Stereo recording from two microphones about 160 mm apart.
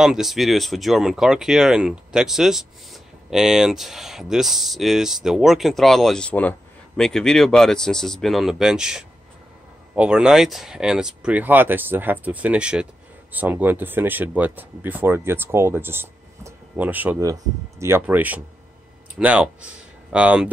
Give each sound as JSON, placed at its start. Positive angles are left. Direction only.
{"t": 0.0, "sound": "speech", "side_deg": -5}